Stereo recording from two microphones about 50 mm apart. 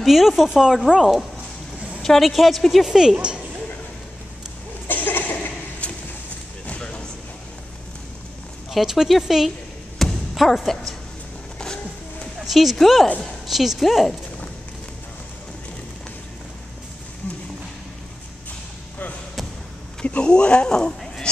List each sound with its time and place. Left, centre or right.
0.0 s speech: centre
2.0 s a sound: centre
2.2 s speech: centre
4.8 s a sound: left
5.8 s a sound: left
8.7 s speech: centre
9.9 s music: centre
10.7 s a woman's voice: centre
11.5 s music: centre
12.4 s speech: centre
20.0 s speech: left